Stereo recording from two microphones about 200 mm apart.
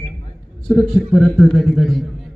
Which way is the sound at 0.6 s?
Centre (ahead or behind).